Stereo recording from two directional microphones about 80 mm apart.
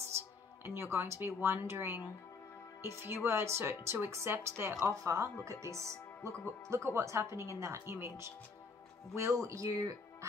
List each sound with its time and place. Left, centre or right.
0.7 s speech: right